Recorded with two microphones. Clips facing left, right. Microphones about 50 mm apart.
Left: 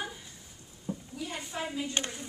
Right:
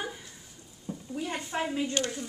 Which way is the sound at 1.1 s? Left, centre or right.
Right.